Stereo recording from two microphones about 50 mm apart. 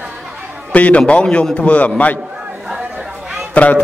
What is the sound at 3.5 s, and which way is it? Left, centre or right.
Speech, left.